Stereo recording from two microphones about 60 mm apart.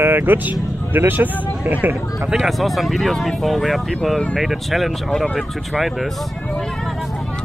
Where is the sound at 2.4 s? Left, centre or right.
Centre.